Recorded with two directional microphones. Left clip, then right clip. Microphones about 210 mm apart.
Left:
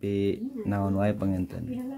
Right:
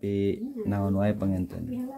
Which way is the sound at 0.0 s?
5° left (ahead or behind).